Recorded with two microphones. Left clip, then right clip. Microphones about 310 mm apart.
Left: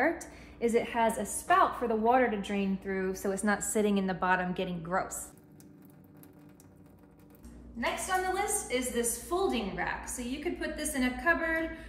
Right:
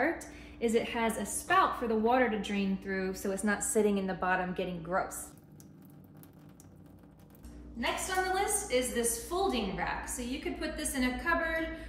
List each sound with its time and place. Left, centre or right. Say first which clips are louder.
0.0 s a woman's voice: left 2 dB; centre
8.4 s a woman's voice: right 1 dB; centre